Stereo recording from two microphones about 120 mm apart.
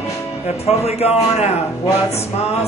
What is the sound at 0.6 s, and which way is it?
Speech, 60° left (ahead or behind).